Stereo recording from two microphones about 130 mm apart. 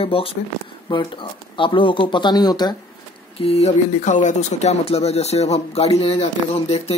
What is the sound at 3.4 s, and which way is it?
Speech, 55° left (ahead or behind).